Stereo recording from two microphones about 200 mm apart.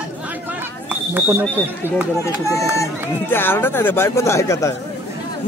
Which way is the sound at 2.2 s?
15° left (ahead or behind).